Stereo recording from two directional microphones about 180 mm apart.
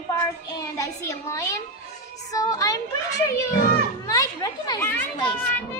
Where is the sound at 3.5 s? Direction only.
50° left (ahead or behind).